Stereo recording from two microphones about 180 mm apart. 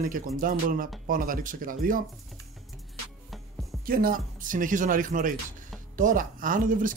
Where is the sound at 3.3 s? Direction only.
Centre (ahead or behind).